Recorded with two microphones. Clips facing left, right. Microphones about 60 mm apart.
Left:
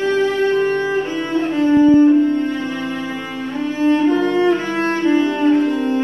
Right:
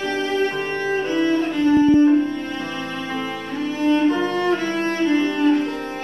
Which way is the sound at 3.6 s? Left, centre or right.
Left.